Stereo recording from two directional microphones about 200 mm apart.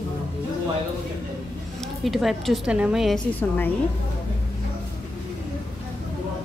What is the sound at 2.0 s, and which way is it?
A woman's voice, centre (ahead or behind).